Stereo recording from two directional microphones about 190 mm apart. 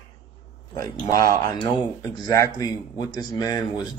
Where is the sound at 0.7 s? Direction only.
20° left (ahead or behind).